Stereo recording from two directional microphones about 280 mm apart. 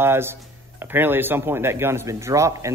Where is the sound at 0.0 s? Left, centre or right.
Centre.